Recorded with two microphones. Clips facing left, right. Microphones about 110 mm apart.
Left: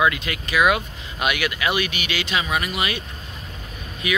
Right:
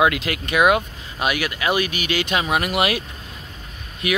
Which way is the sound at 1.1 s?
35° right (ahead or behind).